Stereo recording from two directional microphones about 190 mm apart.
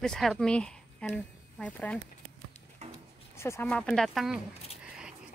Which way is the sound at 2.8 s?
35° right (ahead or behind).